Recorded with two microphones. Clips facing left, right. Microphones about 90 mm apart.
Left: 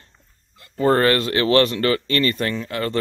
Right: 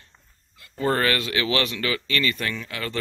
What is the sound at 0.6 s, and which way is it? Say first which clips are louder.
Speech: left 6 dB; 35° left (ahead or behind).